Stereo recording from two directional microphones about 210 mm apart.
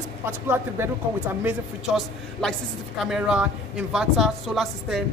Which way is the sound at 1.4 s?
Centre (ahead or behind).